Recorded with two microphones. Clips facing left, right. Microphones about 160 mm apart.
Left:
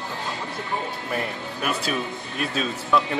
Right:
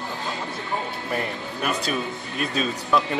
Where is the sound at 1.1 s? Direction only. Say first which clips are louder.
Right 1 dB; centre (ahead or behind).